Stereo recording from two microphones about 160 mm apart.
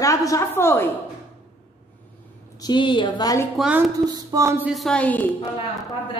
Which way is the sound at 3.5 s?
5° right (ahead or behind).